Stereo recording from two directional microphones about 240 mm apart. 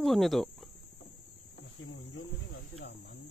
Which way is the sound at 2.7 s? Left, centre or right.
Left.